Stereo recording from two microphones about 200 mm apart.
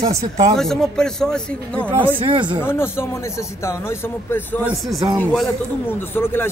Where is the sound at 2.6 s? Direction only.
10° left (ahead or behind).